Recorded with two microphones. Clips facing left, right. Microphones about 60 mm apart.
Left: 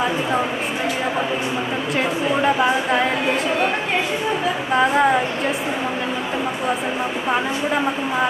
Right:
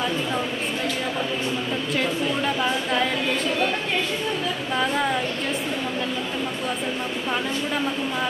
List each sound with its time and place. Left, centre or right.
2.0 s a sound: left
4.7 s speech: left
7.2 s speech: left